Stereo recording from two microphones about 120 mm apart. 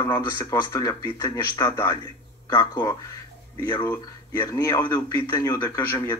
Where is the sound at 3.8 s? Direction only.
20° left (ahead or behind).